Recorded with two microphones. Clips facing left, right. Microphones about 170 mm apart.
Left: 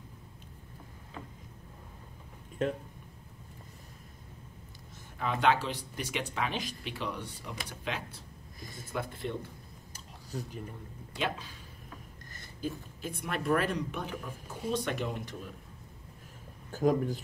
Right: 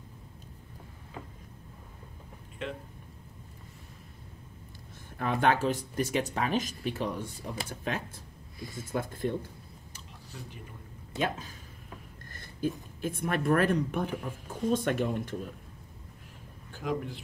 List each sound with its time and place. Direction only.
2.6 s a man's voice: 45° left (ahead or behind)
5.2 s speech: 50° right (ahead or behind)
9.9 s a sound: 40° left (ahead or behind)
11.1 s speech: 45° right (ahead or behind)
12.3 s a sound: 50° right (ahead or behind)
13.0 s speech: 50° right (ahead or behind)
16.7 s a man's voice: 40° left (ahead or behind)